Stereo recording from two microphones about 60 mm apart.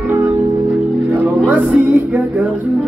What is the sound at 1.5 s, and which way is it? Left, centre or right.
Music, right.